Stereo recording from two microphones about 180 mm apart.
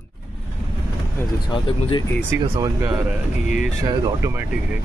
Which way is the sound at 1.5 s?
25° left (ahead or behind).